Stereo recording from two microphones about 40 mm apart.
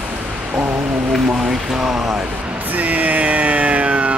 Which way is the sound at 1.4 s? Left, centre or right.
Centre.